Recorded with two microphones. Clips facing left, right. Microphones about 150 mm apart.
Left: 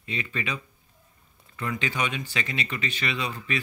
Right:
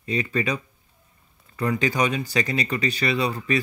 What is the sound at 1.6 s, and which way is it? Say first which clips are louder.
Speech: right 7 dB; 40° right (ahead or behind).